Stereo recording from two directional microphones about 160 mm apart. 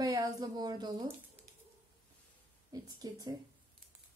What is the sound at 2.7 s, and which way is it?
Speech, 25° right (ahead or behind).